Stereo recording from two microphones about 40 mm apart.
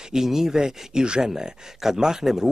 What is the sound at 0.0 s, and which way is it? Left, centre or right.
A man's voice, centre.